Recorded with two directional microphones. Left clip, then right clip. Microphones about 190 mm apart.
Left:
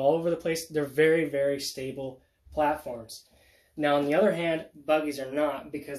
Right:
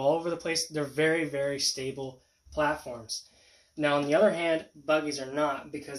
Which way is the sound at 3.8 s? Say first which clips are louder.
Even; 20° left (ahead or behind).